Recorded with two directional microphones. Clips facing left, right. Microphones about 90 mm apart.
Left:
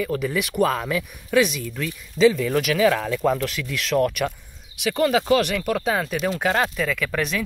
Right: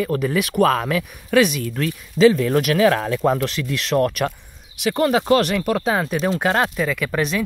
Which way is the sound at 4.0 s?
40° right (ahead or behind).